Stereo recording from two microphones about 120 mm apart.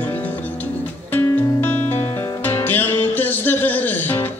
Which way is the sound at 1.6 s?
15° left (ahead or behind).